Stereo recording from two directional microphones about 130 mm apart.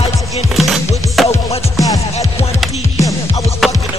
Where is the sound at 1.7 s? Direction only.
25° left (ahead or behind).